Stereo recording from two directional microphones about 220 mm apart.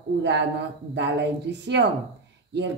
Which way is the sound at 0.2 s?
50° right (ahead or behind).